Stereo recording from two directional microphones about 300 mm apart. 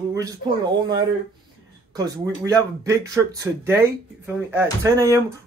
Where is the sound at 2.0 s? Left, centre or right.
Centre.